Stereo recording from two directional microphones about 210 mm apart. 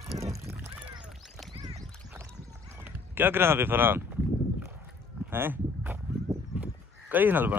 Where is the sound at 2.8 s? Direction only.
10° right (ahead or behind).